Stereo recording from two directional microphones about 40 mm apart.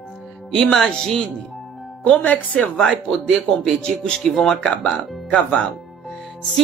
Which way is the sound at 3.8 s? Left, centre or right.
Left.